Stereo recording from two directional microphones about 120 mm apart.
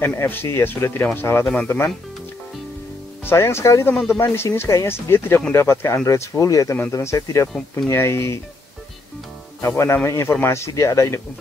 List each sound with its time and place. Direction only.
0.0 s speech: 20° left (ahead or behind)
3.3 s speech: 20° left (ahead or behind)
3.9 s speech: centre (ahead or behind)
4.2 s speech: 20° left (ahead or behind)
9.6 s speech: 25° left (ahead or behind)